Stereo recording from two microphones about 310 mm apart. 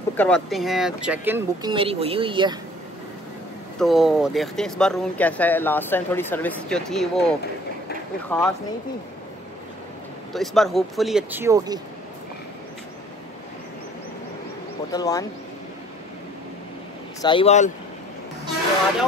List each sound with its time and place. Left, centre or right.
0.2 s speech: centre
3.8 s speech: centre
10.3 s speech: centre
14.9 s speech: centre
17.2 s speech: centre